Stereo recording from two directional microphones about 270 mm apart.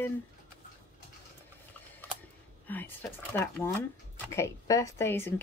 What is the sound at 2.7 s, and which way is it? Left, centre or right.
Speech, centre.